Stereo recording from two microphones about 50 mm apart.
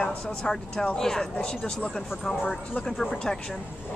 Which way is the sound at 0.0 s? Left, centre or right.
Centre.